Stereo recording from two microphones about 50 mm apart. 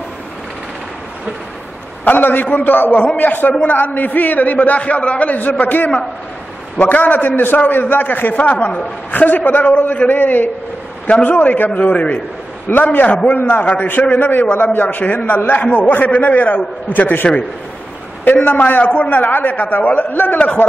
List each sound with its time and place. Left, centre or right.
2.0 s a man's voice: left